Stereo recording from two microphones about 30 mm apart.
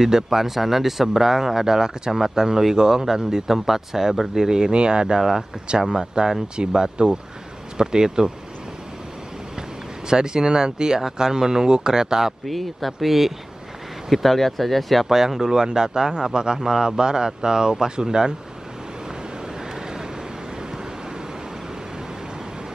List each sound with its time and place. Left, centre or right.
0.0 s speech: centre
4.4 s speech: right
10.0 s speech: right
12.4 s speech: centre
14.1 s speech: centre
15.0 s speech: centre